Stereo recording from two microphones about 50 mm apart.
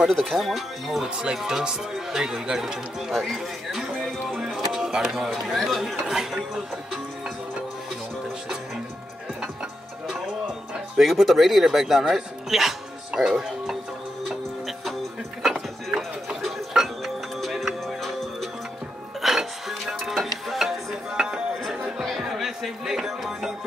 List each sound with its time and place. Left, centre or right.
0.1 s speech: centre
1.1 s speech: centre
11.0 s speech: centre
15.4 s a sound: centre
16.3 s music: centre
22.0 s a sound: centre